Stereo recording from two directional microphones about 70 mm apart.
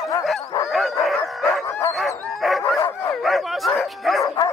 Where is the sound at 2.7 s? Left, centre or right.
Left.